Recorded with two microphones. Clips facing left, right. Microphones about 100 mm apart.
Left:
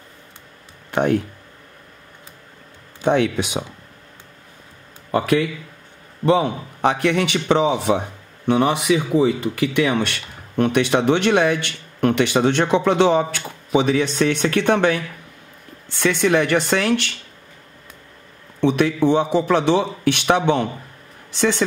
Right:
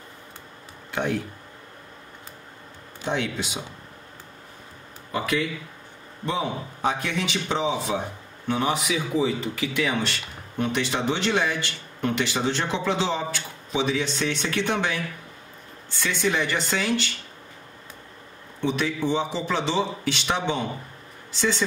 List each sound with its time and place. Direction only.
3.0 s speech: 60° left (ahead or behind)
5.1 s speech: 55° left (ahead or behind)
6.2 s a man's voice: 70° left (ahead or behind)
18.6 s speech: 60° left (ahead or behind)